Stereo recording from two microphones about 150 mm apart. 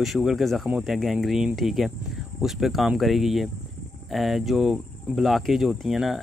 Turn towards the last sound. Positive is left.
turn(degrees=0)  # may be behind; listen again after turning